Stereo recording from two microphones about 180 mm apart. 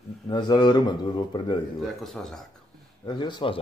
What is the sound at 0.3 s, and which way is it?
Speech, 25° left (ahead or behind).